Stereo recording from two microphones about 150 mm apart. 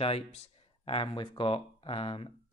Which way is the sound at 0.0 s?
40° left (ahead or behind).